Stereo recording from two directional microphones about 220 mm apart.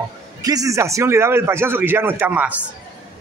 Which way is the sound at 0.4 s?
15° right (ahead or behind).